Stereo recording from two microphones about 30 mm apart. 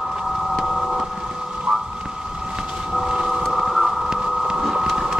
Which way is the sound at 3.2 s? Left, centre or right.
Right.